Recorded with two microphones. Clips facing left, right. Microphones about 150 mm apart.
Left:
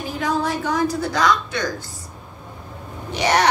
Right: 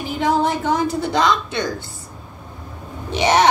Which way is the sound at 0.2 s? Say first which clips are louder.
Right 4 dB; 20° right (ahead or behind).